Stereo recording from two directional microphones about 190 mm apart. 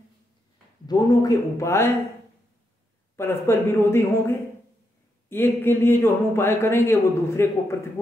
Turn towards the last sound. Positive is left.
turn(degrees=15)  # may be behind; listen again after turning